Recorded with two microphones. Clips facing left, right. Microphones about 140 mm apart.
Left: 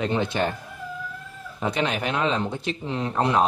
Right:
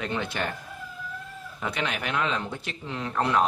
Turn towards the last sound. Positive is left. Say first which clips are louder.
# left 3 dB
turn(degrees=20)  # may be behind; listen again after turning